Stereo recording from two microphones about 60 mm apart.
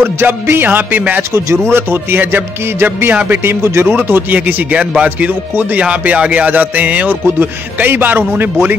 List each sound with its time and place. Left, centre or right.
0.0 s a man's voice: right
1.7 s a man's voice: right